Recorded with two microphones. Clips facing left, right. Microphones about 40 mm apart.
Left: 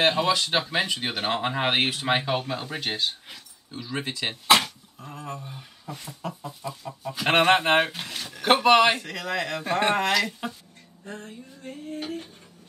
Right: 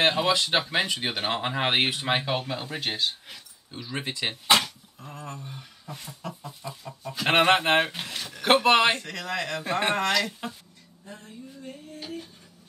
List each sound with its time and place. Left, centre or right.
0.0 s speech: centre
4.3 s speech: centre
11.1 s a sound: left